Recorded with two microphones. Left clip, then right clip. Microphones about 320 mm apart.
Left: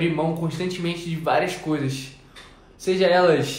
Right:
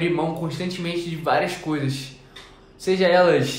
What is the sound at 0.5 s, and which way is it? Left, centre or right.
A man's voice, centre.